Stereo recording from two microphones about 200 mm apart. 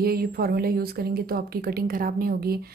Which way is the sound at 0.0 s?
50° right (ahead or behind).